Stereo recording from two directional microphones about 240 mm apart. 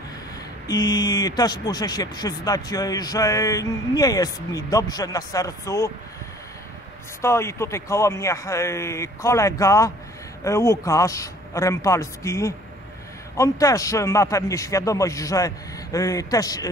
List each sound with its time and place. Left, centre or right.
0.7 s speech: centre
7.2 s speech: centre